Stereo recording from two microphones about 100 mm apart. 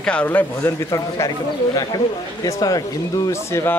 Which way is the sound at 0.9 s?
35° left (ahead or behind).